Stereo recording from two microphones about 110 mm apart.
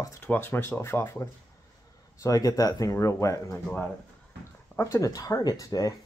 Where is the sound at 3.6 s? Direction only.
10° left (ahead or behind).